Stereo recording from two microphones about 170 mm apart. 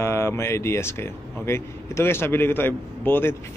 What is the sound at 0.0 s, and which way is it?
Speech, 15° left (ahead or behind).